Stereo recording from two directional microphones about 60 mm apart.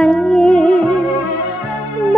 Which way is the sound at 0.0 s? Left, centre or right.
Centre.